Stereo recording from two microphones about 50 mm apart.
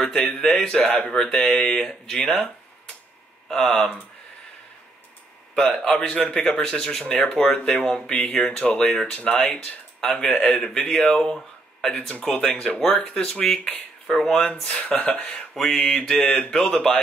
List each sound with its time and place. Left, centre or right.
0.4 s speech: centre
2.2 s speech: left
3.4 s speech: centre
5.8 s speech: centre
9.3 s speech: left
10.0 s speech: centre
11.9 s speech: left
15.5 s speech: centre